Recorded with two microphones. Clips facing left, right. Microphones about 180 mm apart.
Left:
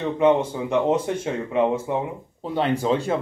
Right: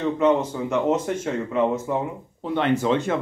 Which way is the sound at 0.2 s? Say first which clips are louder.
Left 3 dB; 10° left (ahead or behind).